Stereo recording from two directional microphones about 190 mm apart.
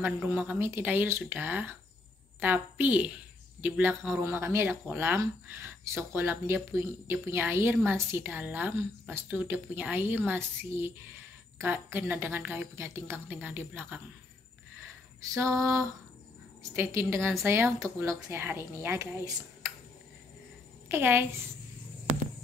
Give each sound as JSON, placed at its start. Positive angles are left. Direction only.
{"t": 0.0, "sound": "speech", "side_deg": -10}
{"t": 15.3, "sound": "speech", "side_deg": -15}
{"t": 20.9, "sound": "speech", "side_deg": -10}